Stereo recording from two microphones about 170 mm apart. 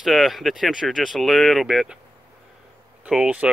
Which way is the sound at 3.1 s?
5° right (ahead or behind).